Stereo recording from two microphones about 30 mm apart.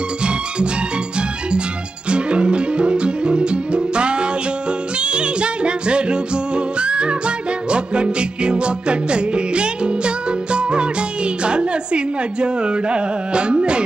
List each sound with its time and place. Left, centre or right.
0.2 s music: right
2.0 s music: right